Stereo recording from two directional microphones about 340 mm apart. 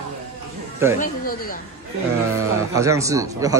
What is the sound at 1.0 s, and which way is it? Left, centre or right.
Speech, left.